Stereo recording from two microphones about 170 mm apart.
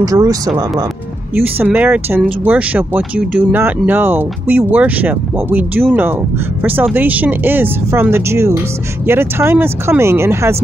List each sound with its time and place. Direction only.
0.0 s speech: 20° right (ahead or behind)